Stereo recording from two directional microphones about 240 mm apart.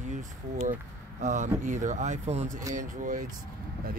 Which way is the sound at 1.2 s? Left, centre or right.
Right.